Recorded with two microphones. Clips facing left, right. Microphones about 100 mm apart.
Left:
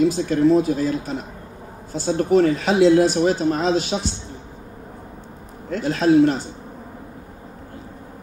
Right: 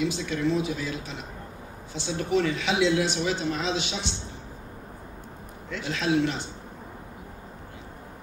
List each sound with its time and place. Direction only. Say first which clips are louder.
0.0 s speech: left 10 dB; 45° left (ahead or behind)
5.7 s speech: left 9 dB; 45° left (ahead or behind)